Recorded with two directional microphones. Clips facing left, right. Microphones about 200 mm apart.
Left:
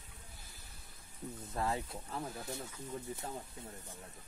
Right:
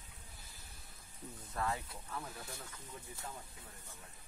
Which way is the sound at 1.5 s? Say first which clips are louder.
Left 2 dB; 25° left (ahead or behind).